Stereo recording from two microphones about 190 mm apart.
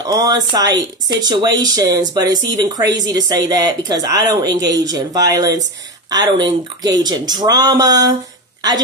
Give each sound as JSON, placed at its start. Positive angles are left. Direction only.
{"t": 0.0, "sound": "speech", "side_deg": -20}